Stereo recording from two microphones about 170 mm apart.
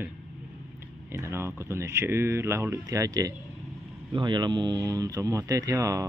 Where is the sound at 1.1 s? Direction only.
15° right (ahead or behind).